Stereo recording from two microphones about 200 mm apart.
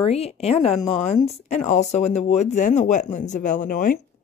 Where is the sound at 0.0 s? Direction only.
30° left (ahead or behind).